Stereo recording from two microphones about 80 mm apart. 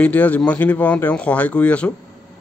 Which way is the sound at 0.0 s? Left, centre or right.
Centre.